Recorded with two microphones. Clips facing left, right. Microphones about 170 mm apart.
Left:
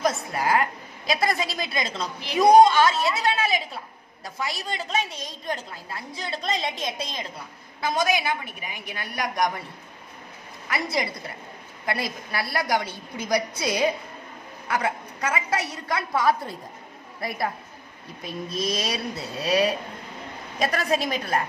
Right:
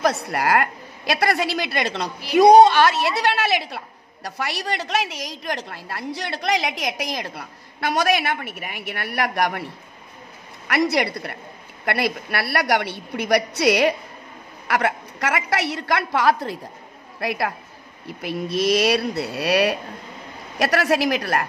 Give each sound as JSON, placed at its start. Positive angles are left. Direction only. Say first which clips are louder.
{"t": 0.0, "sound": "a woman's voice", "louder": "right 3 dB", "side_deg": -70}
{"t": 10.7, "sound": "a woman's voice", "louder": "right 7 dB", "side_deg": -75}
{"t": 20.5, "sound": "a woman's voice", "louder": "right 5 dB", "side_deg": -85}